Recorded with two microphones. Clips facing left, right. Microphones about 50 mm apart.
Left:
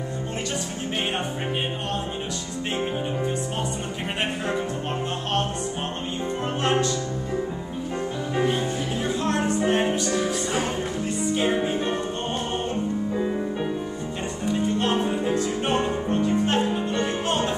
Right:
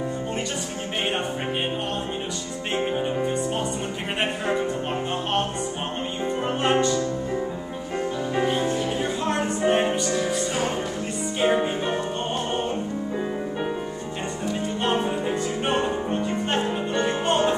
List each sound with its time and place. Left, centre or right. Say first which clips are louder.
2.8 s music: right 3 dB; centre
6.6 s music: right 2 dB; centre
11.3 s music: right 3 dB; centre
14.5 s music: left 2 dB; centre